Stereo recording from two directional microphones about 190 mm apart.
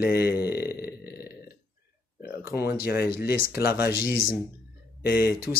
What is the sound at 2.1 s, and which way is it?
Speech, 60° left (ahead or behind).